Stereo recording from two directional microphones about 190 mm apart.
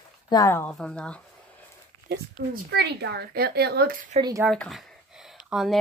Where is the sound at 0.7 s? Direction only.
5° left (ahead or behind).